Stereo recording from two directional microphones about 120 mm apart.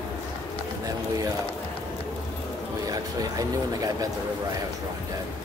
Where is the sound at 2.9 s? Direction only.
30° right (ahead or behind).